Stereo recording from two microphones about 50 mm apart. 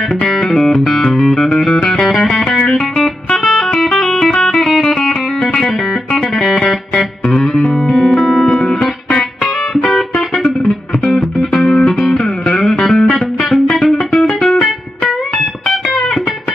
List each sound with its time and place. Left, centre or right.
0.3 s music: centre
3.4 s music: centre
4.3 s music: centre
9.1 s music: left
11.1 s music: centre
11.5 s music: centre